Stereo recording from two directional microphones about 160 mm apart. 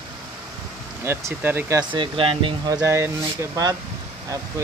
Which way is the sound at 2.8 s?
20° right (ahead or behind).